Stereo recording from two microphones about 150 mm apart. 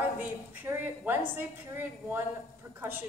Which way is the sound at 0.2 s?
15° right (ahead or behind).